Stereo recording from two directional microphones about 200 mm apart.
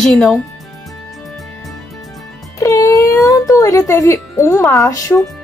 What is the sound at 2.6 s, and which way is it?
Music, 15° left (ahead or behind).